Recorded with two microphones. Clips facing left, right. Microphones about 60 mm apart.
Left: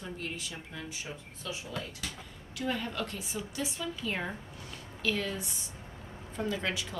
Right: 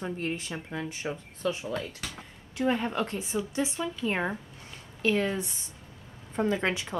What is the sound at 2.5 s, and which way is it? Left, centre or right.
A woman's voice, right.